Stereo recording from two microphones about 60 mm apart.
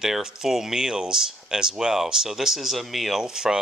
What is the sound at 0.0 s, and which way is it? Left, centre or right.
Speech, centre.